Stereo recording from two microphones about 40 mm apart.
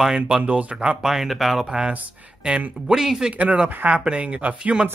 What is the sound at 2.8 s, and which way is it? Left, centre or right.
Speech, centre.